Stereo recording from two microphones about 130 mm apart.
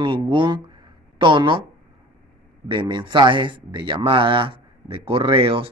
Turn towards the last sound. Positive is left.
turn(degrees=-45)  # may be behind; listen again after turning